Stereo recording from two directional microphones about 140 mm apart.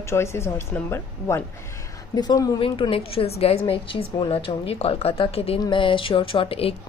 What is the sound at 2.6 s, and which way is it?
A woman's voice, 40° left (ahead or behind).